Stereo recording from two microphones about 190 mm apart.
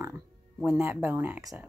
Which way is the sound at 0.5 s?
5° right (ahead or behind).